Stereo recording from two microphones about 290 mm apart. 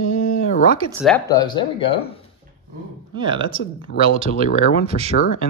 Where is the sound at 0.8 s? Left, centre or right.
Centre.